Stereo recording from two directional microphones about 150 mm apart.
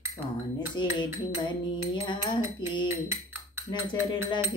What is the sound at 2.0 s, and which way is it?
Speech, 30° left (ahead or behind).